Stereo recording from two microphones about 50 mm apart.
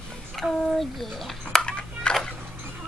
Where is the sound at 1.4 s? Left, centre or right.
Centre.